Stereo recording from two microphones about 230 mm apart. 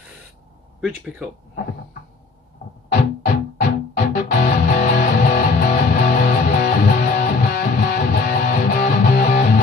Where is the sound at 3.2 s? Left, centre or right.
Left.